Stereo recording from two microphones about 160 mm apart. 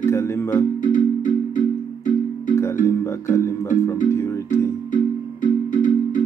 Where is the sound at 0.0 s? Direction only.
15° left (ahead or behind).